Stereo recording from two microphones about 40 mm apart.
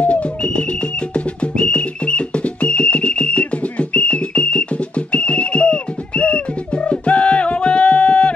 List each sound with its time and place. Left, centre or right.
0.0 s whistle: left